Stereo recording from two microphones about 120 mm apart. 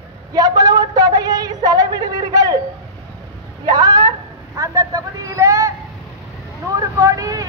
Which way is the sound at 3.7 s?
35° right (ahead or behind).